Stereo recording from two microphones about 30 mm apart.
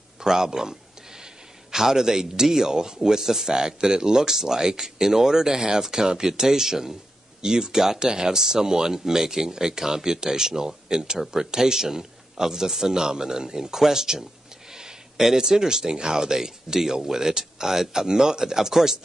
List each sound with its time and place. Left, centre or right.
0.2 s speech: centre
14.7 s a sound: centre
15.3 s speech: centre